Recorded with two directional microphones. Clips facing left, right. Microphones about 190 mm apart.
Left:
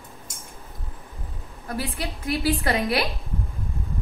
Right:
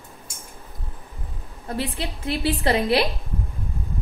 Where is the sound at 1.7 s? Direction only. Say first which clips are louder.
Right 2 dB; 25° right (ahead or behind).